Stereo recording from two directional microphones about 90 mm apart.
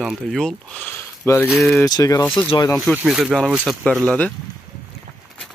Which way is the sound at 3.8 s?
10° left (ahead or behind).